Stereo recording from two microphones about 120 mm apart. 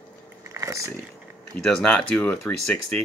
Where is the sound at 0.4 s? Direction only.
25° right (ahead or behind).